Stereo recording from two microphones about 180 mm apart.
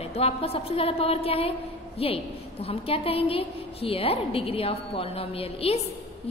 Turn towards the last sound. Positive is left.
turn(degrees=30)  # may be behind; listen again after turning